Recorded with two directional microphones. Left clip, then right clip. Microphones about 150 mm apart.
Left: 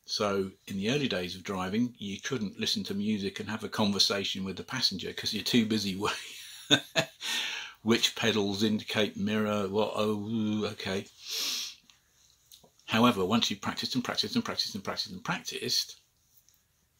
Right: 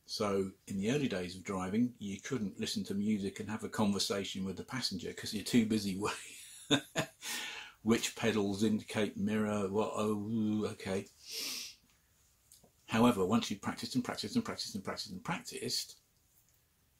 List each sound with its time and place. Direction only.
0.0 s speech: centre (ahead or behind)